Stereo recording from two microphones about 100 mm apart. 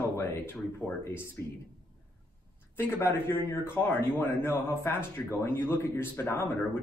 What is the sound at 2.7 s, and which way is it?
Speech, 25° left (ahead or behind).